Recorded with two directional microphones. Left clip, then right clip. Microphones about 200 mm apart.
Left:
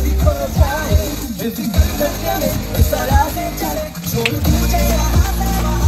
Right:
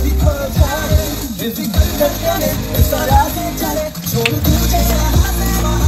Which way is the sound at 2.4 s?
40° right (ahead or behind).